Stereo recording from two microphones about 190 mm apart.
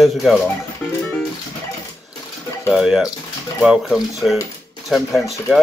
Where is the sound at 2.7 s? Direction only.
5° right (ahead or behind).